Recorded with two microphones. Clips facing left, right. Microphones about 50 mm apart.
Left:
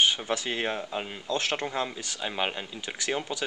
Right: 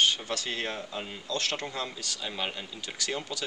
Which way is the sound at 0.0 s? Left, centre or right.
Centre.